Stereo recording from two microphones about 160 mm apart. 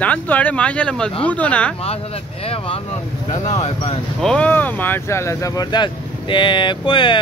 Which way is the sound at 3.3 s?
25° left (ahead or behind).